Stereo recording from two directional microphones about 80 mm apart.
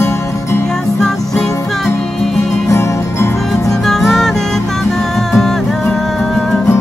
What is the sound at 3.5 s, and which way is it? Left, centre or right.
Music, centre.